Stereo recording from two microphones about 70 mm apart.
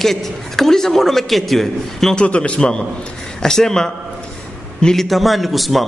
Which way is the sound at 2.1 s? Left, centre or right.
Centre.